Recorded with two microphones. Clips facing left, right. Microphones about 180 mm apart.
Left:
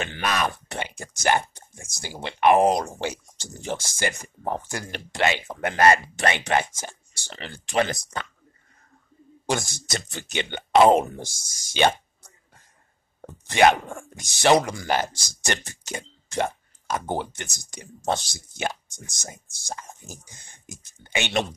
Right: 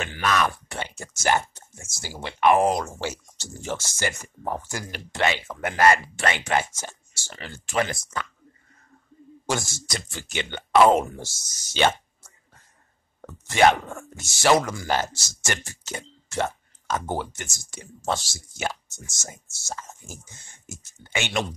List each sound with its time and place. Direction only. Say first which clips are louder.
0.0 s speech: right 2 dB; 20° left (ahead or behind)
9.5 s speech: left 1 dB; 15° left (ahead or behind)